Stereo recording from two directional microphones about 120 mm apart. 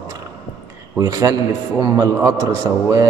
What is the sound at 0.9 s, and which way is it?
A man's voice, 30° right (ahead or behind).